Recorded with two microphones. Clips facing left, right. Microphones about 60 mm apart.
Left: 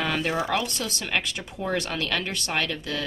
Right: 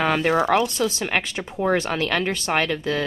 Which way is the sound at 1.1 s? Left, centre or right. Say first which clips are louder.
Right 4 dB; right.